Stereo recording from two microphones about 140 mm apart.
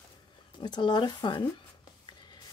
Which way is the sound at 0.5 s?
35° left (ahead or behind).